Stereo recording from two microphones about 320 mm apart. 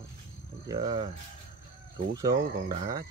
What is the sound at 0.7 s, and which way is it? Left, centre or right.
Speech, centre.